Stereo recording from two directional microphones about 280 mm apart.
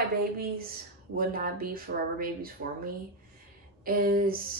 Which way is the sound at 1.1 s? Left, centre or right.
Right.